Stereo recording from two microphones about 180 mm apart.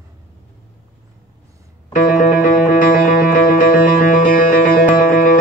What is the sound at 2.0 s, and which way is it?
Music, 55° left (ahead or behind).